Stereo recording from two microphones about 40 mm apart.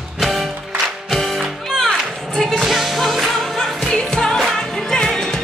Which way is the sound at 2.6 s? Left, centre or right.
Centre.